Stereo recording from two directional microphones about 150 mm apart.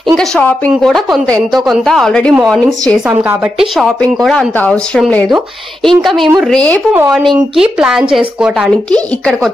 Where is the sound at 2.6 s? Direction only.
25° right (ahead or behind).